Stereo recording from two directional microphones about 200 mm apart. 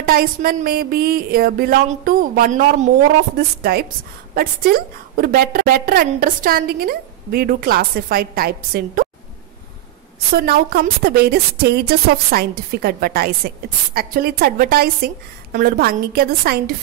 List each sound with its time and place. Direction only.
0.0 s a woman's voice: 45° right (ahead or behind)
10.3 s a woman's voice: 50° right (ahead or behind)